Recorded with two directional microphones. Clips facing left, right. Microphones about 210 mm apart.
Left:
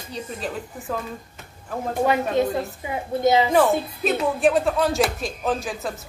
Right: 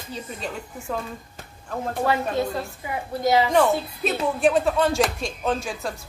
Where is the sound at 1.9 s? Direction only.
15° left (ahead or behind).